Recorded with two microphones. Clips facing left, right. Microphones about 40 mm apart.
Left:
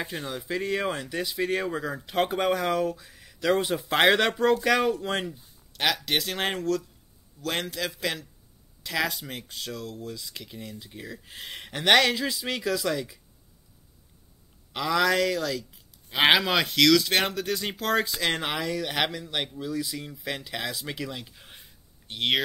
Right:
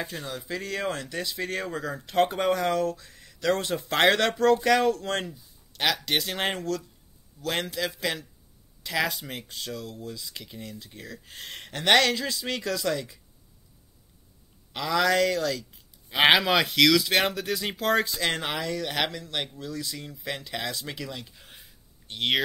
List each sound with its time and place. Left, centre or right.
0.0 s speech: centre
14.7 s speech: centre